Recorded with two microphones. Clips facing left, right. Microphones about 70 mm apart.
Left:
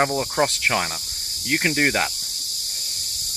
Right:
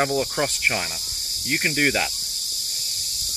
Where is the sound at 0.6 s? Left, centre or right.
Left.